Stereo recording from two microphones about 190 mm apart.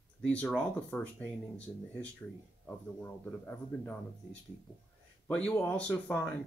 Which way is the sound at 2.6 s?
10° left (ahead or behind).